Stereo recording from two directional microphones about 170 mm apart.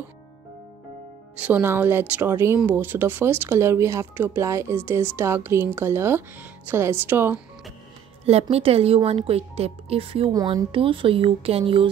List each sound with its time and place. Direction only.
1.4 s speech: 10° right (ahead or behind)
8.3 s a woman's voice: 35° right (ahead or behind)